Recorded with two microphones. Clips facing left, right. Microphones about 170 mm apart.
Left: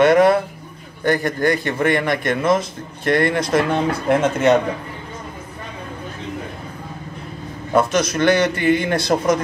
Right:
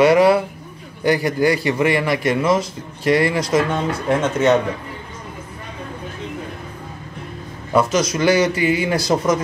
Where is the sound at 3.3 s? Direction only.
55° left (ahead or behind).